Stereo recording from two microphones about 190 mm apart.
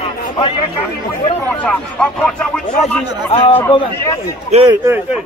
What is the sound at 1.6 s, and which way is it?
Speech, 5° left (ahead or behind).